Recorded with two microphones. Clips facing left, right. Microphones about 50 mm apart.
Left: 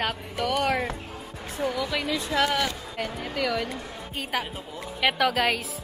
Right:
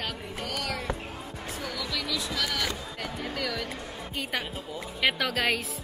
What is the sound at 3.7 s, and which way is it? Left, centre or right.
A woman's voice, centre.